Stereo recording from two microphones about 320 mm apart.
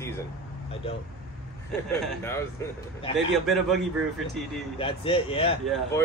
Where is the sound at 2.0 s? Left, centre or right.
Centre.